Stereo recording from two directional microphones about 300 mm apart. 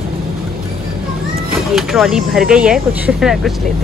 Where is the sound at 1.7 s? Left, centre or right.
Centre.